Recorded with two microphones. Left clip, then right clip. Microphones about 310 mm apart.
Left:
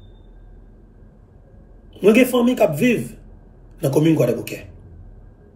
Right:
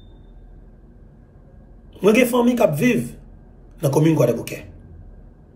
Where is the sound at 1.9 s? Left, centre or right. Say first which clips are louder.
Left 1 dB; centre.